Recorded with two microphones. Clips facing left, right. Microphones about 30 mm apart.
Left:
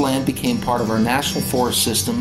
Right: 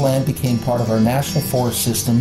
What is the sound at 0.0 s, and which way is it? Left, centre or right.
Speech, left.